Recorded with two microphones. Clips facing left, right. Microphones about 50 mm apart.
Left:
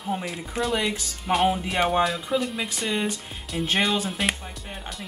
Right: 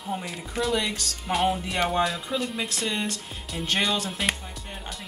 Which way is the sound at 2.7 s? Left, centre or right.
Centre.